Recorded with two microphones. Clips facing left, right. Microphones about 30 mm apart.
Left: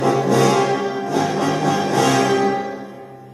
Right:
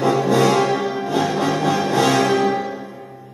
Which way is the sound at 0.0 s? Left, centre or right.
Centre.